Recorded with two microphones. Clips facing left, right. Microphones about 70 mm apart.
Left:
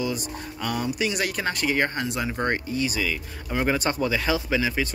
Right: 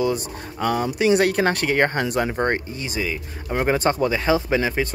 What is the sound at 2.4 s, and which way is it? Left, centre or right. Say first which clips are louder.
Speech: right 2 dB; right.